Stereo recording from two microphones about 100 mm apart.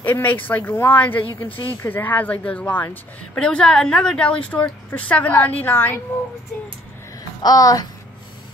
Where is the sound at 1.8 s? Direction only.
20° left (ahead or behind).